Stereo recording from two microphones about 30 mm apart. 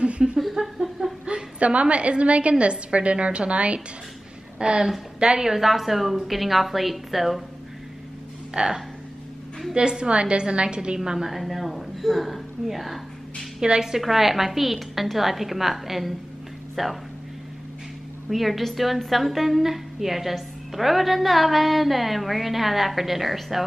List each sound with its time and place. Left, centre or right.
0.2 s a sound: right
0.6 s a sound: right
1.6 s a woman's voice: right
4.6 s a woman's voice: right
5.5 s a woman's voice: centre
8.6 s a woman's voice: right
9.8 s a woman's voice: right
11.1 s a woman's voice: centre
11.3 s a woman's voice: centre
13.6 s a woman's voice: right
13.8 s a woman's voice: centre
18.3 s a woman's voice: centre